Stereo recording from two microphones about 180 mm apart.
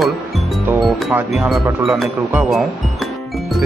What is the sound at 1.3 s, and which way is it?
Speech, centre (ahead or behind).